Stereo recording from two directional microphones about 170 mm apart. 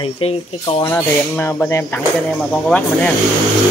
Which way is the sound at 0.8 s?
15° left (ahead or behind).